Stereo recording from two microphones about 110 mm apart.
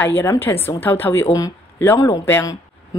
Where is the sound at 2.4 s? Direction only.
30° left (ahead or behind).